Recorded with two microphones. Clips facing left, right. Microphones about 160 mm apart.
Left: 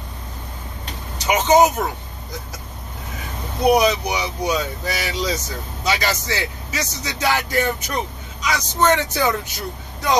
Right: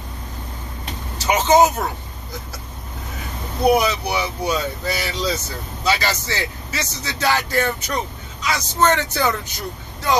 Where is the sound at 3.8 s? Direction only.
15° left (ahead or behind).